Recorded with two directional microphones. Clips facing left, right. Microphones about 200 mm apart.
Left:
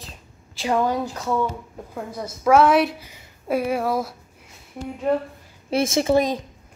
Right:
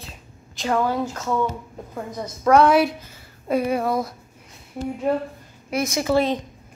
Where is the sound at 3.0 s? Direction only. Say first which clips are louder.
Right 1 dB; 15° left (ahead or behind).